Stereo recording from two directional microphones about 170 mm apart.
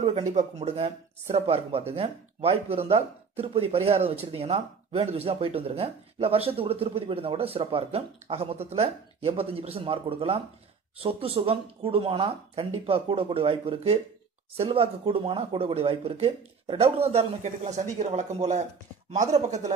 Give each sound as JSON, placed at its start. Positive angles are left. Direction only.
{"t": 0.0, "sound": "speech", "side_deg": -40}